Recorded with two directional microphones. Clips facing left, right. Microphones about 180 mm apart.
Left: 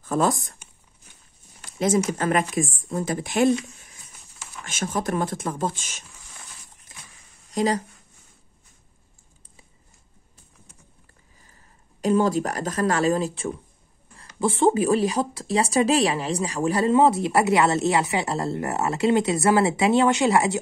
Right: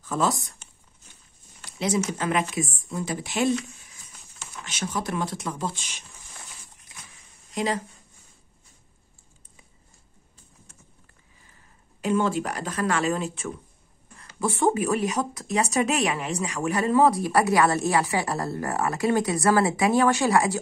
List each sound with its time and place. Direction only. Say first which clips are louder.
0.0 s speech: left 3 dB; 55° left (ahead or behind)
2.0 s speech: left 3 dB; 45° left (ahead or behind)
4.6 s speech: left 3 dB; 50° left (ahead or behind)
7.5 s speech: left 4 dB; 40° left (ahead or behind)
12.0 s speech: left 3 dB; 40° left (ahead or behind); by 20.5 s 25° left (ahead or behind)